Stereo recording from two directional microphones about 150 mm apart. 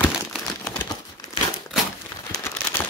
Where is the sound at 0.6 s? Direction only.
15° left (ahead or behind).